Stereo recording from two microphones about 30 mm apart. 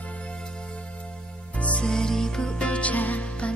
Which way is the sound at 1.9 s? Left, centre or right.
Left.